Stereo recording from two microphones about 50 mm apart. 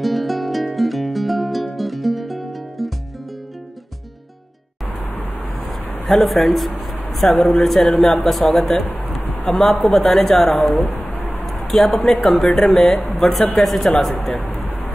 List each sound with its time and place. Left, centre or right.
0.0 s music: centre
6.0 s a woman's voice: centre
10.8 s speech: left
11.4 s a sound: centre
12.2 s speech: centre